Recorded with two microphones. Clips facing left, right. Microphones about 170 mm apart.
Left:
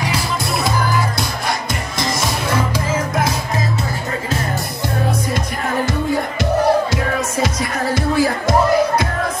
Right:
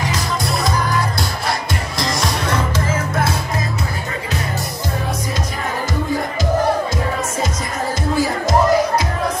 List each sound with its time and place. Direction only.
0.0 s music: 5° left (ahead or behind)
2.0 s music: centre (ahead or behind)
7.4 s music: 65° left (ahead or behind)